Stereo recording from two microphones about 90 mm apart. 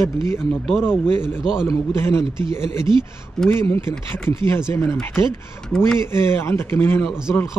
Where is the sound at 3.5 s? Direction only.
25° left (ahead or behind).